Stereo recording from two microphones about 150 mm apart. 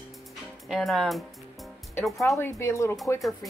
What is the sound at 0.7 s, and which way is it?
Speech, centre (ahead or behind).